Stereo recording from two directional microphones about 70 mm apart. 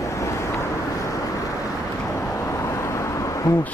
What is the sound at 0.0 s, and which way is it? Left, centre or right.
Vehicle, left.